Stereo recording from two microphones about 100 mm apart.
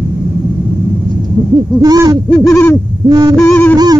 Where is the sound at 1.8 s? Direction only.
40° right (ahead or behind).